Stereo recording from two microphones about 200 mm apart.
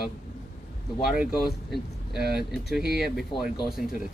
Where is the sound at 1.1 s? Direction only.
Centre (ahead or behind).